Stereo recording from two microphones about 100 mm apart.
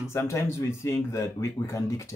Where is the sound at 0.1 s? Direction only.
30° left (ahead or behind).